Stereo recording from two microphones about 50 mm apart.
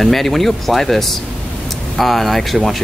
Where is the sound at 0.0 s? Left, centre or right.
Centre.